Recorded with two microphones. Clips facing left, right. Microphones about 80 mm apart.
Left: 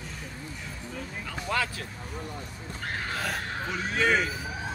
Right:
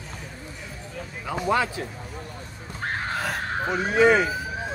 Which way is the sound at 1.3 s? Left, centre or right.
Right.